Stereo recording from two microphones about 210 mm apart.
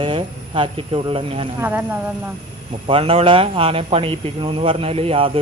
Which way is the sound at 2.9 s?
25° right (ahead or behind).